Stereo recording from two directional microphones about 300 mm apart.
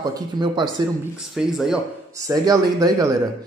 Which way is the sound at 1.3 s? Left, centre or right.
Centre.